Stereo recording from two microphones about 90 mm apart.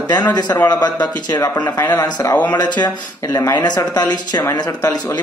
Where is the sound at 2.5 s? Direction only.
50° left (ahead or behind).